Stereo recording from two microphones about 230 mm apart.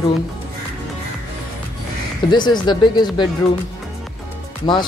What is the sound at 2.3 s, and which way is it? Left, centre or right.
Speech, centre.